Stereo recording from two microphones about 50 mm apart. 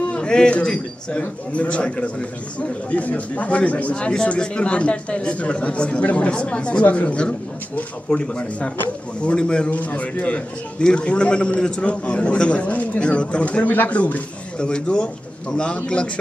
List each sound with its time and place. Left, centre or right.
0.1 s speech: centre
9.7 s speech: left